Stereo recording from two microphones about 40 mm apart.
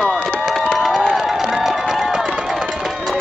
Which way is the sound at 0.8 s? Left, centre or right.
Centre.